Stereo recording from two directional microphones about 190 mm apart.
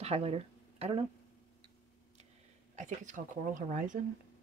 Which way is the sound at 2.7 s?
40° right (ahead or behind).